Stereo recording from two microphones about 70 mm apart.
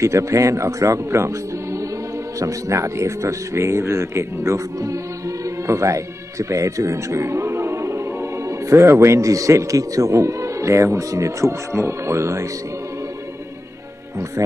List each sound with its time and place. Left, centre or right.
0.0 s speech: right